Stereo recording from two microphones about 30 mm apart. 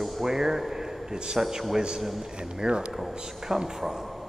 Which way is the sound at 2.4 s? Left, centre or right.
Right.